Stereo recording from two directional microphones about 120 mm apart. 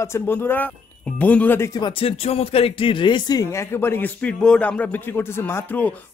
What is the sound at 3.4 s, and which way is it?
Speech, 25° left (ahead or behind).